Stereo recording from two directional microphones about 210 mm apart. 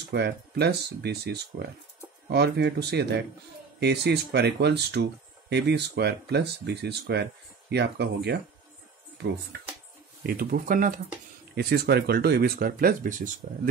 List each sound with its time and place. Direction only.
0.1 s speech: 50° right (ahead or behind)
10.2 s speech: 45° right (ahead or behind)